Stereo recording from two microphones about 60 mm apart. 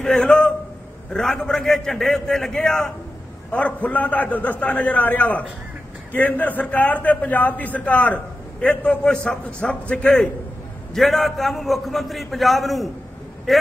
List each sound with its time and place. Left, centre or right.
0.0 s a sound: centre
1.1 s a man's voice: centre
3.5 s a man's voice: left
11.0 s a man's voice: centre